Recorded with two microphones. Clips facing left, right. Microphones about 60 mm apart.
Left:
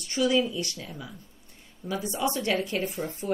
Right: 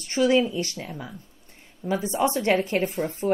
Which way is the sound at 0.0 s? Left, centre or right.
Right.